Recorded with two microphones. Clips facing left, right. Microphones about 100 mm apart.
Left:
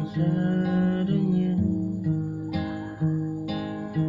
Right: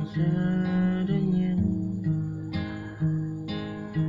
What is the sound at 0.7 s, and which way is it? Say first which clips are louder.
Guitar: left 2 dB; 40° left (ahead or behind).